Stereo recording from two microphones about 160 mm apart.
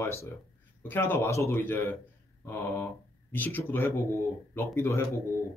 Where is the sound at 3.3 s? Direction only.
10° left (ahead or behind).